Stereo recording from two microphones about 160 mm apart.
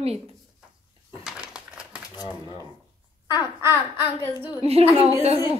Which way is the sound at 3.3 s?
15° right (ahead or behind).